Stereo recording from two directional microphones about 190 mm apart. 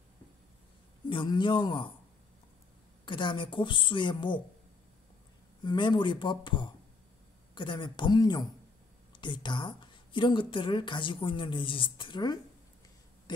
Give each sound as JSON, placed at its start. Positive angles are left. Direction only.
{"t": 1.0, "sound": "a woman's voice", "side_deg": 25}
{"t": 3.1, "sound": "a woman's voice", "side_deg": 25}
{"t": 5.6, "sound": "a woman's voice", "side_deg": 25}